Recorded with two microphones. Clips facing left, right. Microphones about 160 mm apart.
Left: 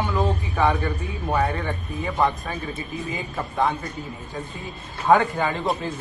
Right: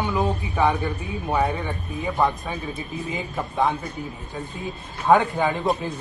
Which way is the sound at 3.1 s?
15° right (ahead or behind).